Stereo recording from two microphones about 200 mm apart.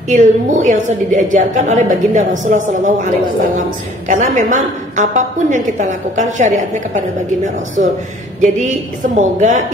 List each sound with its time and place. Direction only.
0.1 s a woman's voice: 40° right (ahead or behind)
4.1 s a woman's voice: 40° right (ahead or behind)
8.4 s a woman's voice: 40° right (ahead or behind)